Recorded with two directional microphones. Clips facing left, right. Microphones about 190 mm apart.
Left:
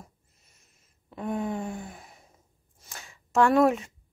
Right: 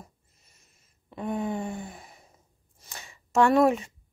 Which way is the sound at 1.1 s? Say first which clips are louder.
Even; centre (ahead or behind).